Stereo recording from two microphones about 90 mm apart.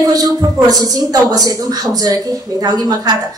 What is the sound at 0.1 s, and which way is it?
A woman's voice, 40° right (ahead or behind).